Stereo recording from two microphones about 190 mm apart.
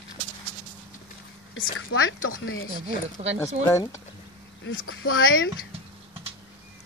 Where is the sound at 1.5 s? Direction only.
90° left.